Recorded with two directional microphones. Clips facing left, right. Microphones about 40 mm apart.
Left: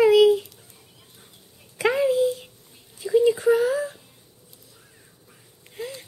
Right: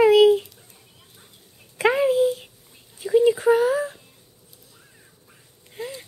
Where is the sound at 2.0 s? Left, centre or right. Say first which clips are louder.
Right 1 dB; centre.